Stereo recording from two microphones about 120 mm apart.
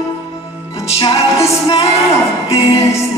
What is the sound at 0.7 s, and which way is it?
Music, 50° left (ahead or behind).